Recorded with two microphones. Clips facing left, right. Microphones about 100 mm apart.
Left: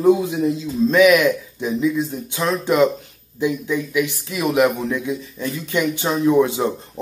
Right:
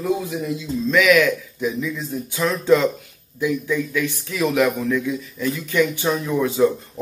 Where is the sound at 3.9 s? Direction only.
15° left (ahead or behind).